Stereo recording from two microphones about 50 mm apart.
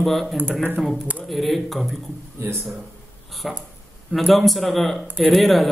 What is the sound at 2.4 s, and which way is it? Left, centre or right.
Speech, right.